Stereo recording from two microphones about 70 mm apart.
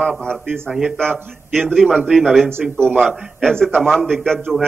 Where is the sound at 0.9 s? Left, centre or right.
Centre.